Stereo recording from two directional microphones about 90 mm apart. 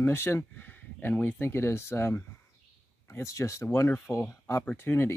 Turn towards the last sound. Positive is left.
turn(degrees=25)  # may be behind; listen again after turning